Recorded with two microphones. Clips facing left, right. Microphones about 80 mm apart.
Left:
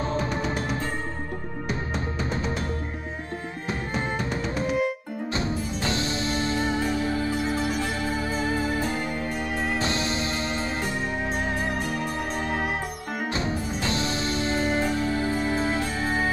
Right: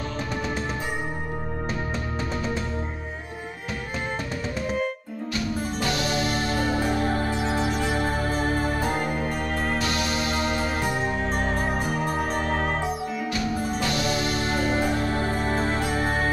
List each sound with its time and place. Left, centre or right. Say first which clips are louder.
5.3 s music: right 1 dB; left
6.9 s music: right 1 dB; right
9.8 s music: right 1 dB; left
11.8 s music: right 3 dB; right
12.4 s music: right 2 dB; centre
13.3 s music: right 1 dB; left
14.9 s music: even; right